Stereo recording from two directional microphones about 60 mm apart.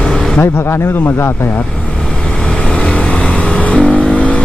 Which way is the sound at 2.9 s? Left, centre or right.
Centre.